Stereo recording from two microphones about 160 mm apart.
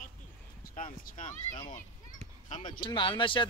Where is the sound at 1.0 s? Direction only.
55° left (ahead or behind).